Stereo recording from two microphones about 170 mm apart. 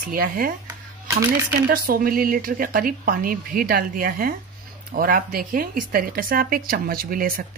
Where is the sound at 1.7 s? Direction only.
60° right (ahead or behind).